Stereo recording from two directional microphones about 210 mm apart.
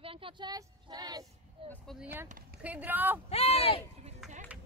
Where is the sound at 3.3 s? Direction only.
30° left (ahead or behind).